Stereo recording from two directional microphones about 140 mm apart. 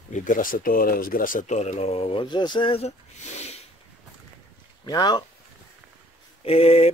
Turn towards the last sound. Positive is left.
turn(degrees=45)  # may be behind; listen again after turning